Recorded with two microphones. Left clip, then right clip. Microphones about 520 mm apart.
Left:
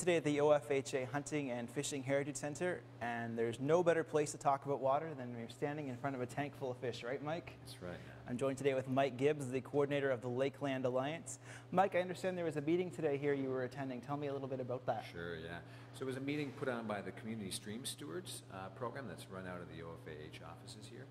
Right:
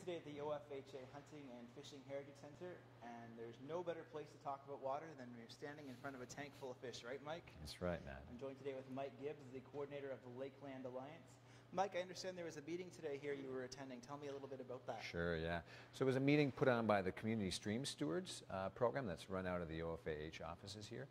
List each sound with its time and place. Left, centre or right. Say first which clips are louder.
0.0 s speech: left 15 dB; left
15.0 s speech: right 1 dB; right